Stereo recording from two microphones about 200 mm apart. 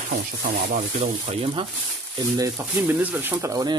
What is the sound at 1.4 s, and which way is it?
Speech, 25° right (ahead or behind).